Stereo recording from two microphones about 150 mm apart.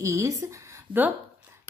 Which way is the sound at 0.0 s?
20° right (ahead or behind).